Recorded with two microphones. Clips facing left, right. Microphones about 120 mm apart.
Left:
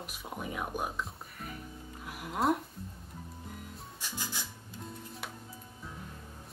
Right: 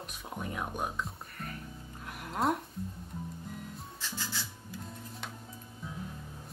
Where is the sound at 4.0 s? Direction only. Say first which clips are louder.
Even; 15° left (ahead or behind).